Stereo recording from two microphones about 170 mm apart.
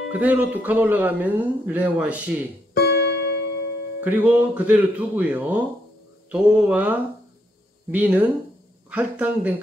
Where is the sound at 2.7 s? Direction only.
70° left (ahead or behind).